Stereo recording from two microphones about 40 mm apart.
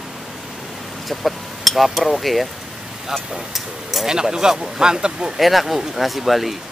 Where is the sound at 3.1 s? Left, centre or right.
Centre.